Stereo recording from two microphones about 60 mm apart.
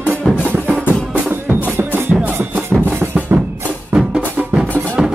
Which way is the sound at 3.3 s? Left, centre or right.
Right.